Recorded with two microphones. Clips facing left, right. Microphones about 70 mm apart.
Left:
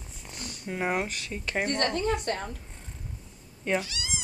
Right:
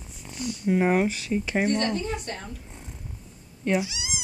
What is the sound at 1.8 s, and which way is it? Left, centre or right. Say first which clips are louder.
Speech: left 1 dB; left.